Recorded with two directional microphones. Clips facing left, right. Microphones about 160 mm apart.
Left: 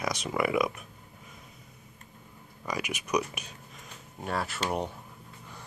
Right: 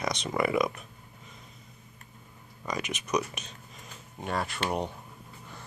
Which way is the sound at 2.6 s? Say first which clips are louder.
Even; 10° left (ahead or behind).